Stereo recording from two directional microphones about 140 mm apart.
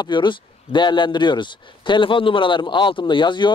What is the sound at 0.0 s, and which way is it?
A man's voice, 35° left (ahead or behind).